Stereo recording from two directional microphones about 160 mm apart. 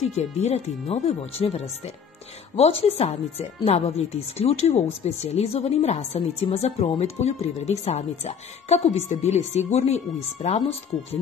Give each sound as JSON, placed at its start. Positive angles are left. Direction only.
{"t": 0.0, "sound": "speech", "side_deg": 45}